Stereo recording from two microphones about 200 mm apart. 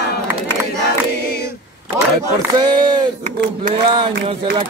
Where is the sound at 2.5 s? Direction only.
20° right (ahead or behind).